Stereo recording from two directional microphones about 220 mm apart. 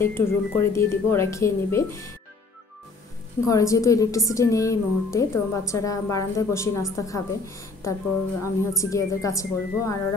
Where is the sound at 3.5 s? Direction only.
15° left (ahead or behind).